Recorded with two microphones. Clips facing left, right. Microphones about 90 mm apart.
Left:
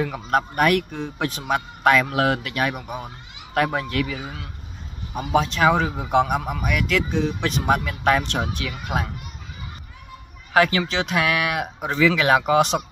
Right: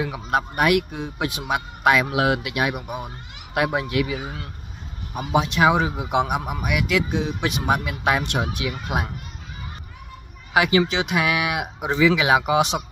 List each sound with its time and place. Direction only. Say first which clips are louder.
0.0 s a man's voice: left 1 dB; 10° right (ahead or behind)
10.5 s a man's voice: even; 15° right (ahead or behind)